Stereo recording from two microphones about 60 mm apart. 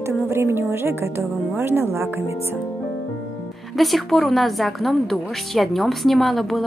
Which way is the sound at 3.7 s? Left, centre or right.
Centre.